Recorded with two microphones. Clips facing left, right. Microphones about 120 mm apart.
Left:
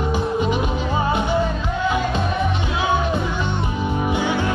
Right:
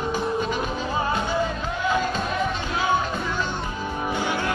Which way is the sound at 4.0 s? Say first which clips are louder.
Left 4 dB; 15° left (ahead or behind).